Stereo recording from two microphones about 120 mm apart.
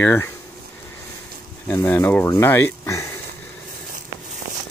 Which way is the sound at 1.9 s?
15° left (ahead or behind).